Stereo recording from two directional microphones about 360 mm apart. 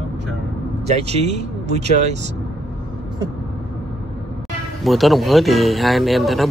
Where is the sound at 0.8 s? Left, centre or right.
Centre.